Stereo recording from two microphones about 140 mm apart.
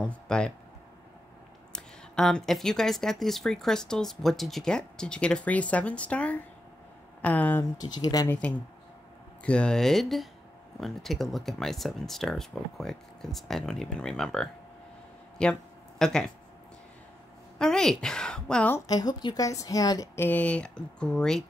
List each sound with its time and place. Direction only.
0.3 s speech: 5° left (ahead or behind)
1.7 s speech: 5° left (ahead or behind)
7.8 s a woman's voice: 25° left (ahead or behind)
8.3 s speech: 10° left (ahead or behind)
17.6 s speech: 5° left (ahead or behind)
18.9 s a woman's voice: 30° left (ahead or behind)
20.2 s speech: 10° left (ahead or behind)